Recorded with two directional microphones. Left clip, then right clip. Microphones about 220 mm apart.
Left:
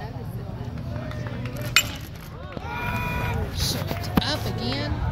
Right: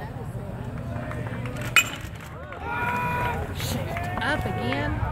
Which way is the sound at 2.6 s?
30° right (ahead or behind).